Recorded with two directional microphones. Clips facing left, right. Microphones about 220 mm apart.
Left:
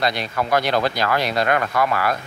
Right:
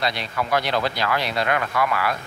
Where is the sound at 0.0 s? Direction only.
45° left (ahead or behind).